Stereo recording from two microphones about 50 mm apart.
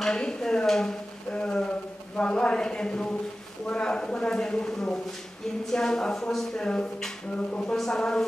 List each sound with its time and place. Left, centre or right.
0.0 s dishes: centre
1.3 s a sound: centre
3.6 s speech: left
6.6 s speech: centre
7.7 s speech: centre